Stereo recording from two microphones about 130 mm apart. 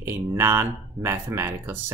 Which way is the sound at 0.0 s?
20° right (ahead or behind).